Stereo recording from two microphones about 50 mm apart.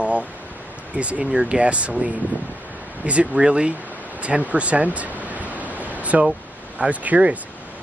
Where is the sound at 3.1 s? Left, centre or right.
Right.